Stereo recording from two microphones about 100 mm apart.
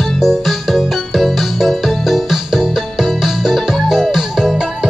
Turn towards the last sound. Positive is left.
turn(degrees=-5)  # may be behind; listen again after turning